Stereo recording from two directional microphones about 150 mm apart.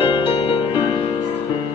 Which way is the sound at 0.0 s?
35° left (ahead or behind).